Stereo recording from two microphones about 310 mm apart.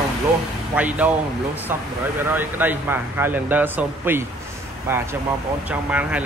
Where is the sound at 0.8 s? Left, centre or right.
Centre.